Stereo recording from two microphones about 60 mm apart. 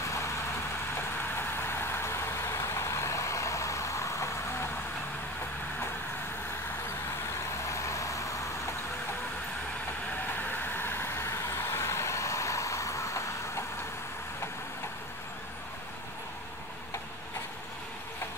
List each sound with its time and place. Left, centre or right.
1.3 s vehicle: left
7.7 s vehicle: left
10.5 s vehicle: left